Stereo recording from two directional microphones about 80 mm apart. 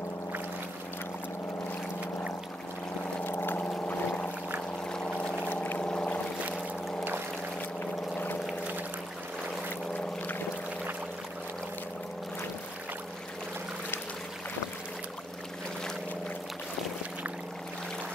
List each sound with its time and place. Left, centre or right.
3.3 s boat: left
3.7 s pour: centre
4.9 s boat: centre
7.8 s boat: left